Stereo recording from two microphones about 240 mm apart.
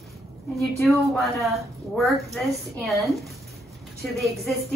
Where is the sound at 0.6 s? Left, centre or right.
Centre.